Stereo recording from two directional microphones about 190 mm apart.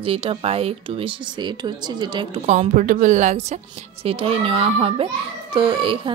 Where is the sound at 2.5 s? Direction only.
40° right (ahead or behind).